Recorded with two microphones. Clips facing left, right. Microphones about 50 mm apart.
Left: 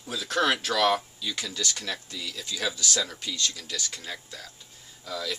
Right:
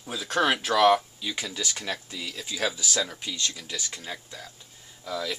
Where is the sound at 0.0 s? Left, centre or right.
Centre.